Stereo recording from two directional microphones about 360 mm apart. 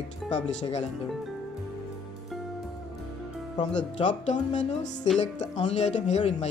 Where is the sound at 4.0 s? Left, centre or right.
Centre.